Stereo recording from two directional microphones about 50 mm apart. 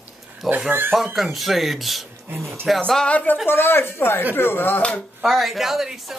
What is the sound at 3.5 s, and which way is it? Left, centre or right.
Speech, left.